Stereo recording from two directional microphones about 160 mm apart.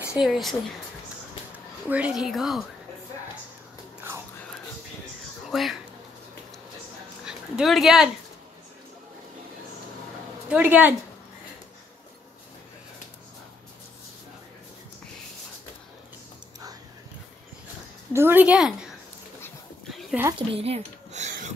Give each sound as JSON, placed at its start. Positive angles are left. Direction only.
{"t": 0.1, "sound": "a woman's voice", "side_deg": 0}
{"t": 1.9, "sound": "a woman's voice", "side_deg": -5}
{"t": 5.5, "sound": "a child's voice", "side_deg": 0}
{"t": 7.2, "sound": "speech", "side_deg": -5}
{"t": 10.5, "sound": "a woman's voice", "side_deg": -10}
{"t": 18.1, "sound": "a woman's voice", "side_deg": -15}
{"t": 20.3, "sound": "a sound", "side_deg": -35}